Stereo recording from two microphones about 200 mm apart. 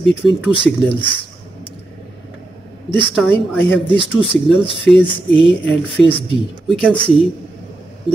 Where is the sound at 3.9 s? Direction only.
25° left (ahead or behind).